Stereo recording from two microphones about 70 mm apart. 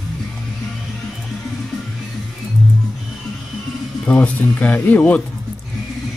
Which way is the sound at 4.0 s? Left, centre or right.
Centre.